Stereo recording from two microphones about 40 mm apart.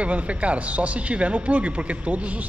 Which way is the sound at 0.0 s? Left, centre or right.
Right.